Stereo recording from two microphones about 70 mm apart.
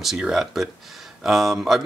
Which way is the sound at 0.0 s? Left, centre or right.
Centre.